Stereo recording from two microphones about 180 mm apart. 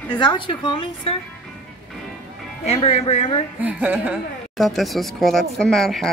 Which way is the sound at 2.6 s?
35° left (ahead or behind).